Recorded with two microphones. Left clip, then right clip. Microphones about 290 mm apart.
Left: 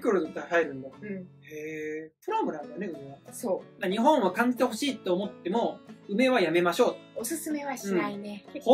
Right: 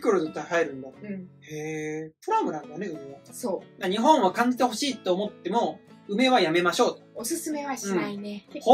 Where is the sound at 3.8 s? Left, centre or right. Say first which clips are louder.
Right 3 dB; centre.